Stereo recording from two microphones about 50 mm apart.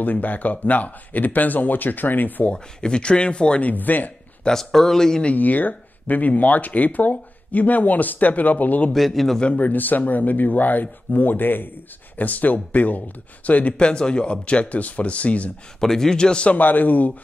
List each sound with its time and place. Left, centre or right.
0.0 s speech: left
2.5 s speech: centre
3.7 s speech: left
4.5 s a man's voice: centre
5.2 s speech: left
8.9 s a man's voice: centre
9.4 s speech: left
9.7 s speech: left
15.8 s a man's voice: centre
16.5 s speech: left